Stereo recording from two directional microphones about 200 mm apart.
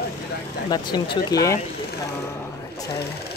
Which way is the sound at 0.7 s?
20° left (ahead or behind).